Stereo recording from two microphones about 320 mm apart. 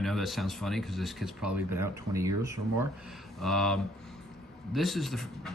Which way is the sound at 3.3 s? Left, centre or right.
Centre.